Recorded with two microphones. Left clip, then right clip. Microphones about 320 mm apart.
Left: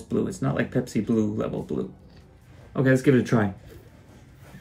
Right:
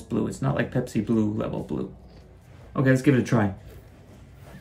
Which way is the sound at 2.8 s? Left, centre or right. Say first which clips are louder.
Left 1 dB; right.